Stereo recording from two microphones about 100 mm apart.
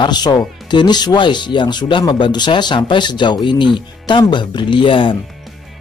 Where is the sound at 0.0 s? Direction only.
45° left (ahead or behind).